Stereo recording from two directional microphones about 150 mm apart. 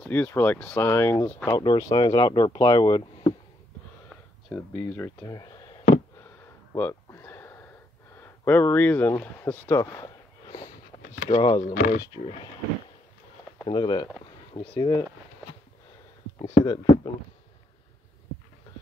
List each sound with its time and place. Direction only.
0.0 s speech: 10° left (ahead or behind)
4.5 s speech: 15° left (ahead or behind)
6.7 s a sound: 15° left (ahead or behind)
8.2 s speech: 15° left (ahead or behind)
11.2 s speech: 35° left (ahead or behind)
11.6 s speech: 65° left (ahead or behind)
13.7 s speech: 30° left (ahead or behind)
16.4 s speech: 25° left (ahead or behind)